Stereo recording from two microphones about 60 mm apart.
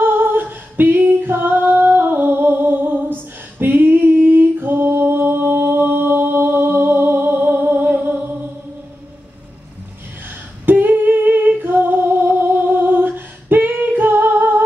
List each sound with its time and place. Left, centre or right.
0.0 s a capella: right
10.6 s female singing: right